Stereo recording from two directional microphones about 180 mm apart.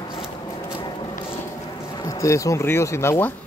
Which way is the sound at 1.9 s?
20° left (ahead or behind).